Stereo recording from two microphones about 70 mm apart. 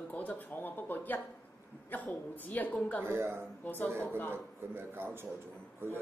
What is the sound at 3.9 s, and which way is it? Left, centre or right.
Speech, right.